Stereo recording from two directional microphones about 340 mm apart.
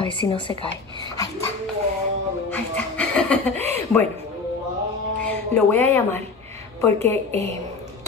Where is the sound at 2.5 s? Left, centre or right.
Centre.